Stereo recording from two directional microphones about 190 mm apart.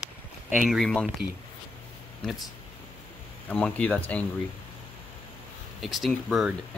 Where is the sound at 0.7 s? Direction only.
Centre (ahead or behind).